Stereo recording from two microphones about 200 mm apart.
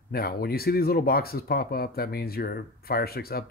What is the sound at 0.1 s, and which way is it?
Speech, 50° left (ahead or behind).